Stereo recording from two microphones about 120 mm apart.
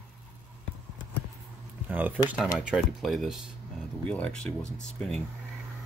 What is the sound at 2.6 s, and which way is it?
Speech, 5° right (ahead or behind).